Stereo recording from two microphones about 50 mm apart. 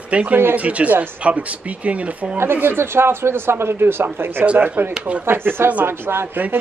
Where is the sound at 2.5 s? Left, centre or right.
Right.